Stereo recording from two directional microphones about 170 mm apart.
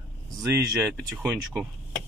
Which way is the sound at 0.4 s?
20° right (ahead or behind).